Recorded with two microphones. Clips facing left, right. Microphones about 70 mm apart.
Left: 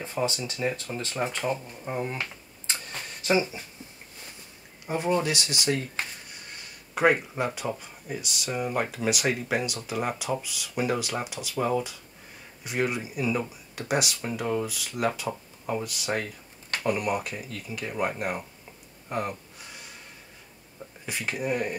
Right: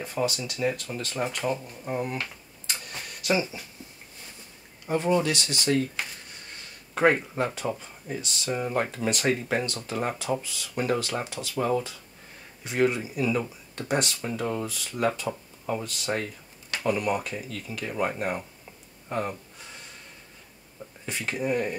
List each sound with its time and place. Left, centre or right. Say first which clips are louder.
0.0 s speech: right 1 dB; left
2.0 s a sound: even; left
3.3 s speech: left 1 dB; left
4.8 s speech: right 2 dB; centre
7.0 s speech: right 1 dB; centre
21.0 s speech: right 1 dB; centre